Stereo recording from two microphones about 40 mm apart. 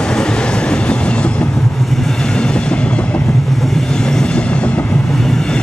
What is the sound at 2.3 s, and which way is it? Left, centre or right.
Train, left.